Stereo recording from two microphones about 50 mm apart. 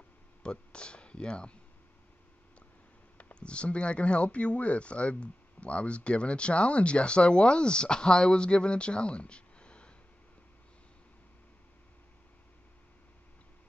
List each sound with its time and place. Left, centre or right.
0.4 s speech: centre
3.3 s speech: left